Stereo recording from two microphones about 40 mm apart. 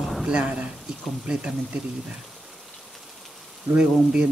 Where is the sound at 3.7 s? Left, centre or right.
Right.